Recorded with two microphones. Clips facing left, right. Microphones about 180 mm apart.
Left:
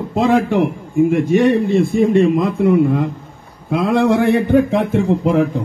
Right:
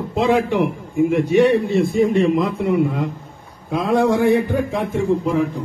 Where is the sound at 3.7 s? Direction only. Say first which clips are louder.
Left 2 dB; 70° left (ahead or behind).